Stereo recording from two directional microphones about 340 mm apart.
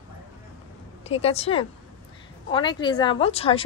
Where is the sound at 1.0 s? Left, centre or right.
Centre.